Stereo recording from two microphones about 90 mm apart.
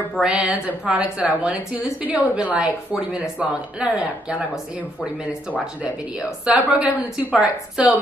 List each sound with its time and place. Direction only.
0.2 s speech: 10° right (ahead or behind)
6.5 s speech: 10° right (ahead or behind)